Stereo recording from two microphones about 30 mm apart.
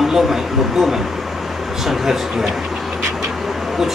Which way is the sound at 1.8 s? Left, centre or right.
Centre.